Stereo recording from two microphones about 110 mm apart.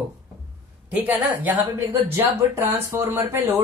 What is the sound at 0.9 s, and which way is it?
A woman's voice, 15° right (ahead or behind).